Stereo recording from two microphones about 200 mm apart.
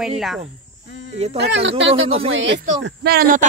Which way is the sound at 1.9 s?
30° right (ahead or behind).